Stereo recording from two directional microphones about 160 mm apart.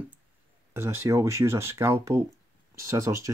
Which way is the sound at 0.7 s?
15° right (ahead or behind).